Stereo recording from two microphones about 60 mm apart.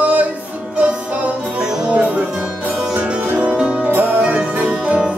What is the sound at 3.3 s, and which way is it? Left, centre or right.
Music, centre.